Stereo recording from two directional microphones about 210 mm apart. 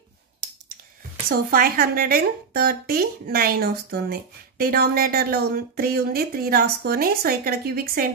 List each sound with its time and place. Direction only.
1.3 s a woman's voice: 45° right (ahead or behind)